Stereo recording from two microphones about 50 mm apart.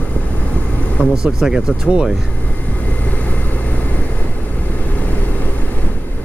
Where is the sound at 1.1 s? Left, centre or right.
Centre.